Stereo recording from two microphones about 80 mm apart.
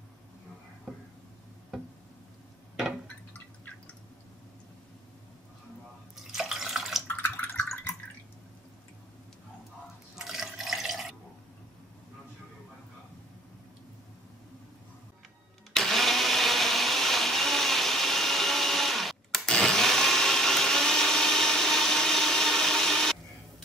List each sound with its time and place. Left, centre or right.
3.3 s drip: centre
6.3 s water: centre
7.1 s a sound: left
10.1 s water: centre
15.7 s blender: centre